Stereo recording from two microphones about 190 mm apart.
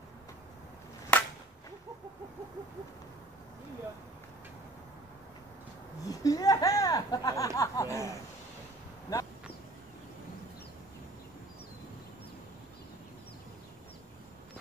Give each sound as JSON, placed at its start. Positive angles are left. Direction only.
{"t": 1.1, "sound": "whip", "side_deg": 5}
{"t": 6.0, "sound": "speech", "side_deg": 20}
{"t": 9.1, "sound": "speech", "side_deg": 15}